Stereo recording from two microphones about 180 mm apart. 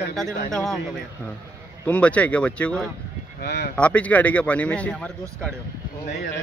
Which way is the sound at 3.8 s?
5° left (ahead or behind).